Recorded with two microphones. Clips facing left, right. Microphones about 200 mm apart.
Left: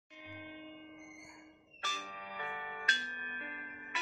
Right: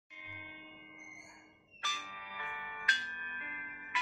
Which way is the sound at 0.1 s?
35° left (ahead or behind).